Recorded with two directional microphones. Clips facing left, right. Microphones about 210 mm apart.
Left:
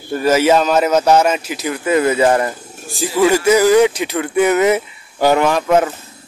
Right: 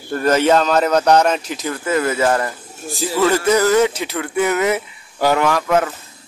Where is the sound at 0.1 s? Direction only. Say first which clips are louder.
Left 2 dB; 5° left (ahead or behind).